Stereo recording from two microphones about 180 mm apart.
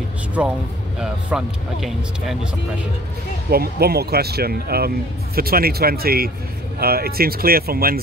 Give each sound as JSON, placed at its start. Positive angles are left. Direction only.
{"t": 0.9, "sound": "speech", "side_deg": -5}
{"t": 3.4, "sound": "speech", "side_deg": -60}